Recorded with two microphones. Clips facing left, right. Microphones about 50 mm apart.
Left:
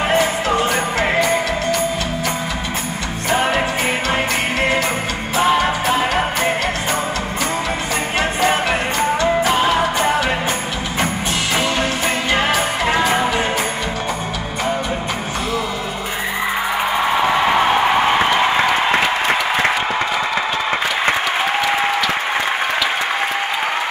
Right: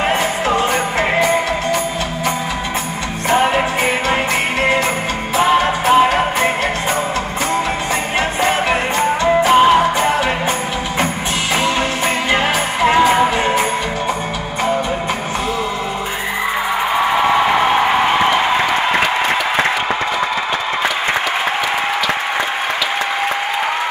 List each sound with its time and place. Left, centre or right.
0.6 s music: centre
3.3 s music: centre
5.3 s music: centre
5.9 s music: right
8.2 s music: right
12.3 s music: centre